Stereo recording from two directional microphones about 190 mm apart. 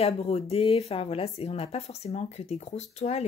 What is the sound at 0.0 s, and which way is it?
Speech, 30° left (ahead or behind).